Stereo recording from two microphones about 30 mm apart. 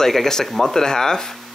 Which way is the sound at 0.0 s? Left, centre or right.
Centre.